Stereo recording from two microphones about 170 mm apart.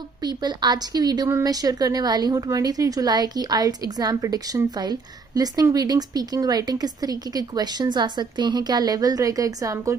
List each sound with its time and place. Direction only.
0.2 s speech: 25° right (ahead or behind)